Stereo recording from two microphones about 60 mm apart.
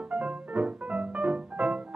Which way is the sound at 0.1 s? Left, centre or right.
Right.